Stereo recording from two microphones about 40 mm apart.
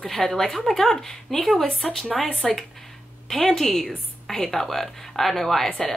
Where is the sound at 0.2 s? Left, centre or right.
Centre.